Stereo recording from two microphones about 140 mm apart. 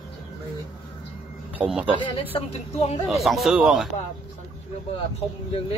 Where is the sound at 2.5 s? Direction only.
50° left (ahead or behind).